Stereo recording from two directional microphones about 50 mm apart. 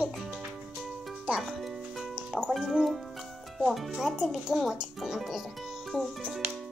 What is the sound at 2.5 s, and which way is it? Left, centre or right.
Speech, centre.